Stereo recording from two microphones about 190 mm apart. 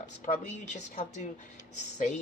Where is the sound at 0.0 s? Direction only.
40° left (ahead or behind).